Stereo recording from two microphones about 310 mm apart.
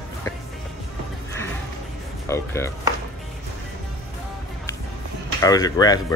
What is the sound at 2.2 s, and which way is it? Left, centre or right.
Speech, centre.